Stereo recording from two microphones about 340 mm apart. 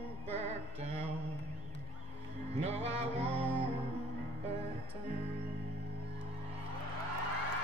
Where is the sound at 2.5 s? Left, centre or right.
Centre.